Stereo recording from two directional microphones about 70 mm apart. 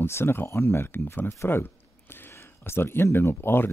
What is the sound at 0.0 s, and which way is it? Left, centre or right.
Speech, left.